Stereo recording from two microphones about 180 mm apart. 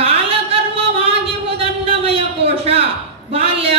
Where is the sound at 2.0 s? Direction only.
30° right (ahead or behind).